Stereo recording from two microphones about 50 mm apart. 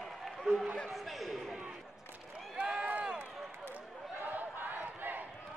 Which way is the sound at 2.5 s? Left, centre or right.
Centre.